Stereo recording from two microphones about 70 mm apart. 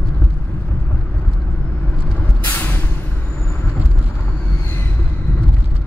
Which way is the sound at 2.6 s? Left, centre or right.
Left.